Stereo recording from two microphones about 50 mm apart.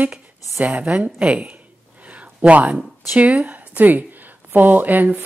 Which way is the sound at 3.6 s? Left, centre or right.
Right.